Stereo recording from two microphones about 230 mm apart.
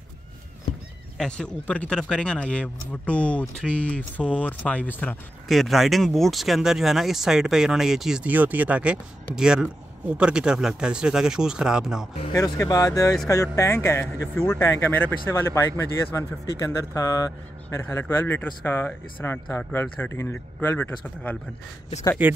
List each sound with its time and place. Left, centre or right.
1.1 s speech: centre
12.4 s a man's voice: centre
22.2 s speech: centre